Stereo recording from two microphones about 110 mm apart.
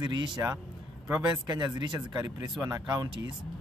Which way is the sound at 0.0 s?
45° right (ahead or behind).